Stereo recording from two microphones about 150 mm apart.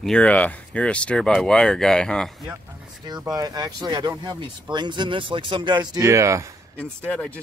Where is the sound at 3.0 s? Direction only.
25° right (ahead or behind).